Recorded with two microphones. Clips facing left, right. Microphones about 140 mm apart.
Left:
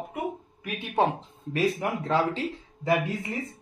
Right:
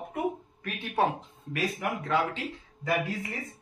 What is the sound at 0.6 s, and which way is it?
Speech, 15° left (ahead or behind).